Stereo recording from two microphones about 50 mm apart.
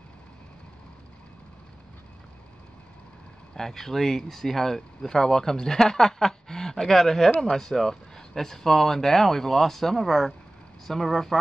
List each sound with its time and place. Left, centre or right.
3.5 s speech: centre